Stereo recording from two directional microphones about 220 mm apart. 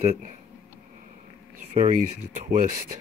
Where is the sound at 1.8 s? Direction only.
30° right (ahead or behind).